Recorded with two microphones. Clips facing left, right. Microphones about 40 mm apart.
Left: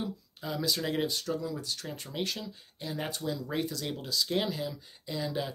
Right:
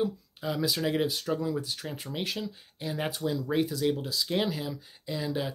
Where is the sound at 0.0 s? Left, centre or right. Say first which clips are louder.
Right 7 dB; centre.